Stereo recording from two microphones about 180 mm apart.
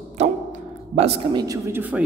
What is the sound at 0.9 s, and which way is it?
Speech, 35° right (ahead or behind).